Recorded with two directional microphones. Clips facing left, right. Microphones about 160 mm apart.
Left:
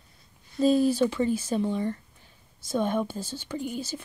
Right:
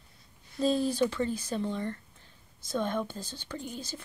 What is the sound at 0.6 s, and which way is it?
Speech, 5° left (ahead or behind).